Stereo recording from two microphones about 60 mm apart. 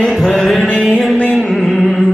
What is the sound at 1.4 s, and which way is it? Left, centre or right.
Music, centre.